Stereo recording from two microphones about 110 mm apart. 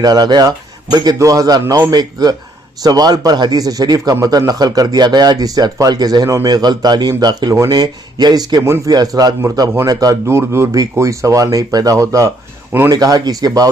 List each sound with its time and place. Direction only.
0.0 s a man's voice: 35° right (ahead or behind)
8.6 s speech: 25° right (ahead or behind)
8.9 s a man's voice: 35° right (ahead or behind)